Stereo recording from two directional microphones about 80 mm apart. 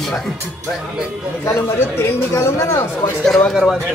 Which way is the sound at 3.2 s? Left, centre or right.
Centre.